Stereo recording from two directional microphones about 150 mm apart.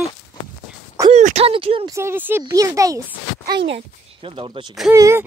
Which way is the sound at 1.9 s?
15° right (ahead or behind).